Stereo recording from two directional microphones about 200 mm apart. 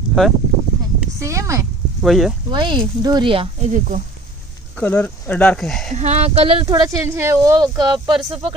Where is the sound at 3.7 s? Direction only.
40° right (ahead or behind).